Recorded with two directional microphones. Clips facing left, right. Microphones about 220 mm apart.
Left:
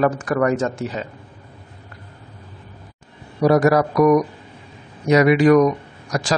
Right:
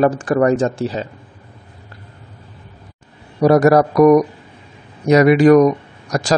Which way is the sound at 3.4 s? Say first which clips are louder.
Right 4 dB; 40° right (ahead or behind).